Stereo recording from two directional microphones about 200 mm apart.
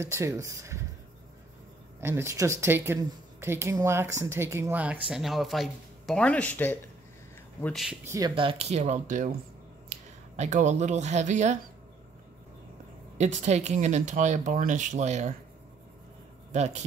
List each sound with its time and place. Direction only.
0.0 s a woman's voice: 15° right (ahead or behind)
2.0 s a woman's voice: 10° right (ahead or behind)
8.4 s speech: 30° right (ahead or behind)
13.2 s speech: 35° right (ahead or behind)
16.5 s speech: 35° right (ahead or behind)